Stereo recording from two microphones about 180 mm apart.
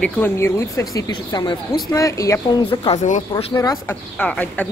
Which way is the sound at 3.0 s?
40° left (ahead or behind).